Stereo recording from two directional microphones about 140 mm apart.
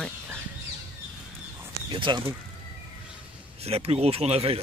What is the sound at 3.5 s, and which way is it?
Speech, 45° right (ahead or behind).